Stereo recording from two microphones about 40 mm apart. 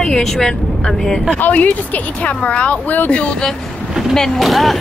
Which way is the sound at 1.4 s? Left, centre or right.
Left.